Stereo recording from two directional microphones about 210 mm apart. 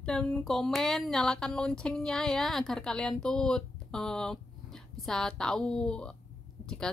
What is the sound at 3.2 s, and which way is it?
Speech, 5° left (ahead or behind).